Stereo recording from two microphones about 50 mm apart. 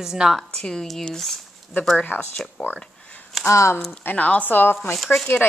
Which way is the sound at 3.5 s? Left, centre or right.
Left.